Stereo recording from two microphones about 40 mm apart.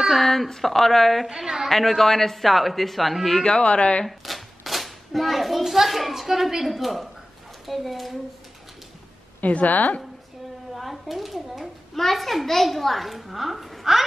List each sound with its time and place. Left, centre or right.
0.1 s a child's voice: centre
1.3 s a woman's voice: centre
1.7 s a child's voice: centre
3.4 s a woman's voice: left
4.2 s a child's voice: centre
9.4 s a woman's voice: left
10.7 s a child's voice: centre